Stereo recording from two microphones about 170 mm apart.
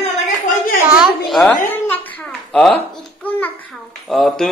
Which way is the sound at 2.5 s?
5° left (ahead or behind).